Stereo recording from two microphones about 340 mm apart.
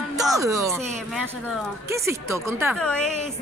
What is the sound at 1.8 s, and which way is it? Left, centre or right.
A woman's voice, centre.